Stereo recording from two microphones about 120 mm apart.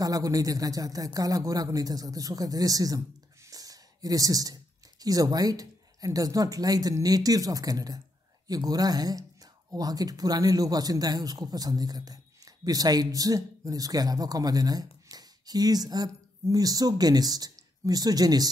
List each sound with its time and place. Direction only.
0.0 s speech: 30° right (ahead or behind)
3.4 s a sound: 30° right (ahead or behind)
5.0 s speech: 30° right (ahead or behind)